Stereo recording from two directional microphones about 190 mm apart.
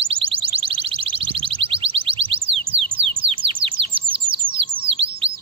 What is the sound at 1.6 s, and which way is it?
Music, 30° right (ahead or behind).